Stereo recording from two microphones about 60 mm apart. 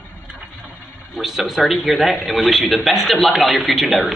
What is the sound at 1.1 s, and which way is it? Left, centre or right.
Speech, centre.